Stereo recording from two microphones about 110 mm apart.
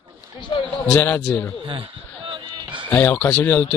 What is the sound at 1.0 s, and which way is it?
Speech, 20° left (ahead or behind).